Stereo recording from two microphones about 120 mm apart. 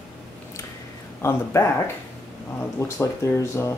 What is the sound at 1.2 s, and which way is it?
Speech, 20° left (ahead or behind).